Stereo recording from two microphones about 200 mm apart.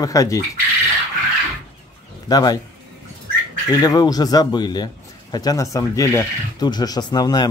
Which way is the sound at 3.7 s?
20° left (ahead or behind).